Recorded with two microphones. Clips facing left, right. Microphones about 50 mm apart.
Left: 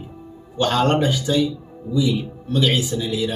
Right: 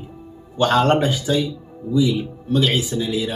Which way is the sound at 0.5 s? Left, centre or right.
Centre.